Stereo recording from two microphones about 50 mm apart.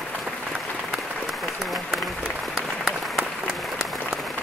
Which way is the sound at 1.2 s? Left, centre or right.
Centre.